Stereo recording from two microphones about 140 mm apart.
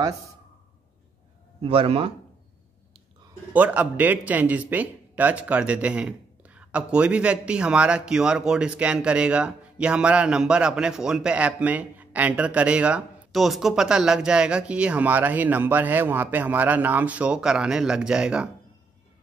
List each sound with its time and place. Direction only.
1.6 s speech: 45° right (ahead or behind)
3.5 s speech: 10° right (ahead or behind)